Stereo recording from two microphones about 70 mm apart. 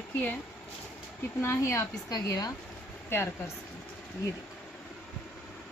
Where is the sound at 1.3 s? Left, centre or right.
Left.